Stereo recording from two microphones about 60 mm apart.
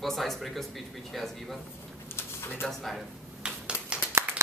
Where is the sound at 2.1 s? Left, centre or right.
Left.